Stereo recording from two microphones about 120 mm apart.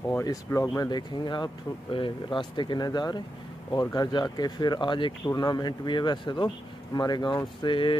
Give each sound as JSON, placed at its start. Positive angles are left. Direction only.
{"t": 0.2, "sound": "speech", "side_deg": 30}